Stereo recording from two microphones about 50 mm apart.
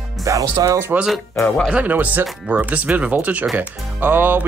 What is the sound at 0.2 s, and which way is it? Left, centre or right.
Speech, right.